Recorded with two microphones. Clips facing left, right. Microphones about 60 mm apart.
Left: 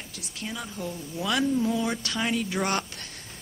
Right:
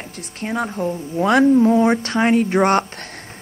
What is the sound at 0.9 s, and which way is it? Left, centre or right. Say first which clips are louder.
Speech: right 12 dB; right.